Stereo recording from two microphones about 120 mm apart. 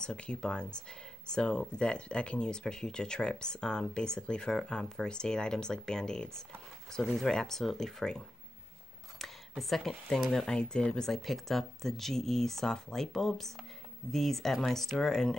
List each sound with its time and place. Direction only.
0.0 s speech: 10° left (ahead or behind)
9.2 s a sound: centre (ahead or behind)
9.6 s speech: centre (ahead or behind)